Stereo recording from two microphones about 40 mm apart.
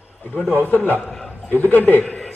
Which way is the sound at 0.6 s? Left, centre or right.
Left.